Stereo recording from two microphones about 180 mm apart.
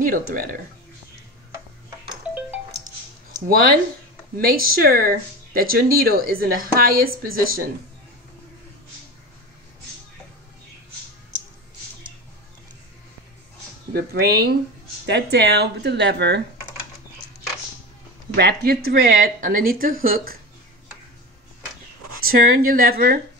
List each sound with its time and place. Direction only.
0.0 s speech: 50° right (ahead or behind)
4.4 s speech: 55° right (ahead or behind)
13.9 s speech: 60° right (ahead or behind)
18.3 s speech: 65° right (ahead or behind)
22.2 s speech: 55° right (ahead or behind)